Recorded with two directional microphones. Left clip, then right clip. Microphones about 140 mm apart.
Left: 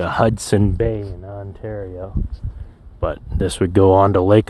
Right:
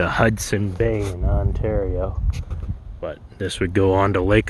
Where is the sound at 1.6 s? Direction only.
35° right (ahead or behind).